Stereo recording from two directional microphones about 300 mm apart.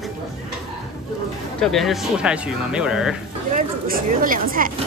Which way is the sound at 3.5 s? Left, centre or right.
Right.